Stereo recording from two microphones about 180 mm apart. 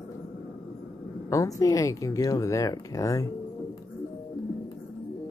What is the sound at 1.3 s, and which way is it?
Speech, 20° left (ahead or behind).